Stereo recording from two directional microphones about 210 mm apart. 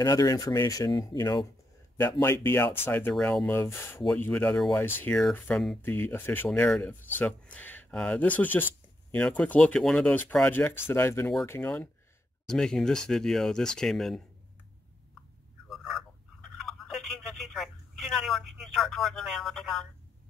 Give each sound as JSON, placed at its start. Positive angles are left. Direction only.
{"t": 0.0, "sound": "speech", "side_deg": 15}
{"t": 15.7, "sound": "a sound", "side_deg": 0}
{"t": 16.6, "sound": "telephone", "side_deg": 0}